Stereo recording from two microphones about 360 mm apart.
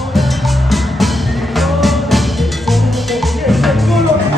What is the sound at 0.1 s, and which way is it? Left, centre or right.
Music, centre.